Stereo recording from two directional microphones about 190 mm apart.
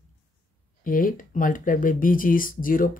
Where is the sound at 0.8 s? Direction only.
45° left (ahead or behind).